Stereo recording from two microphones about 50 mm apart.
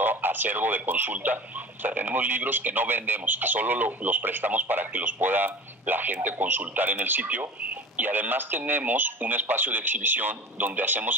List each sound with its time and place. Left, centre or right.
0.0 s speech: right